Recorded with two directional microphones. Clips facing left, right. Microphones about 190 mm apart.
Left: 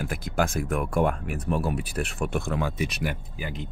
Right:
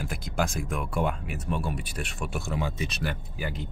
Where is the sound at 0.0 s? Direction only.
55° left (ahead or behind).